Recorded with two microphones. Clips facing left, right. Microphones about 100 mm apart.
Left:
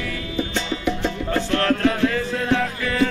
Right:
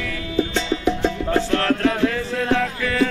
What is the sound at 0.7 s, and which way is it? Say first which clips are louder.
Music: right 4 dB; 30° right (ahead or behind).